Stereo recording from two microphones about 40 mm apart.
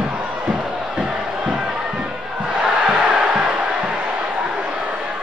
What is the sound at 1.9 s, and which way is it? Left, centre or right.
Crowd, right.